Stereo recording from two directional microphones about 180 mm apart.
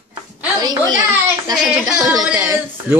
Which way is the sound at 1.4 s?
20° right (ahead or behind).